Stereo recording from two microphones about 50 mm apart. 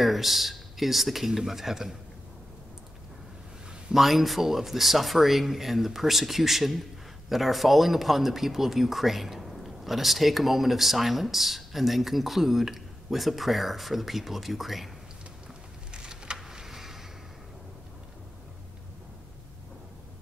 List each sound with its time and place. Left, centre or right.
0.0 s speech: centre
3.9 s speech: centre
15.9 s a sound: centre
16.3 s vehicle: centre